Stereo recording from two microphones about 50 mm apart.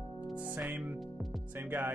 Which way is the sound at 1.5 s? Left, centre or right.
Right.